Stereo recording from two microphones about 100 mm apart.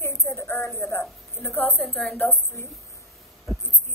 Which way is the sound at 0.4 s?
25° left (ahead or behind).